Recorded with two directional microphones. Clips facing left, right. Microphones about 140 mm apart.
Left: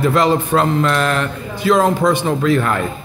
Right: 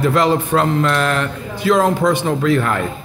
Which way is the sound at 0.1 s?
30° left (ahead or behind).